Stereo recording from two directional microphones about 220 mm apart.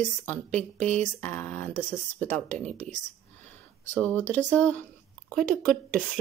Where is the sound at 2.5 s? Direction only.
30° right (ahead or behind).